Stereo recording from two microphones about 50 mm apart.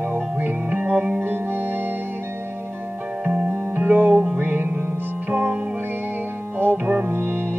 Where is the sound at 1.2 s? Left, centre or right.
Right.